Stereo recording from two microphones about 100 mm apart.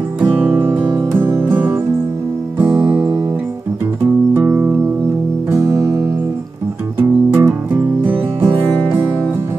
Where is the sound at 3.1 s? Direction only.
35° right (ahead or behind).